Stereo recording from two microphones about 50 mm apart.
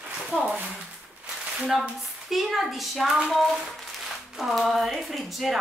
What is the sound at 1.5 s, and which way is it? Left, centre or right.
Speech, centre.